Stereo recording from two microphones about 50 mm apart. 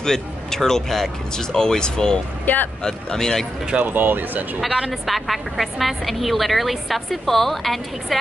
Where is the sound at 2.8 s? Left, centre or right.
Centre.